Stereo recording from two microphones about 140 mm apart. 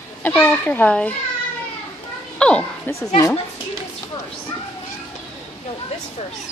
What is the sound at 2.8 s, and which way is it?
Speech, 20° left (ahead or behind).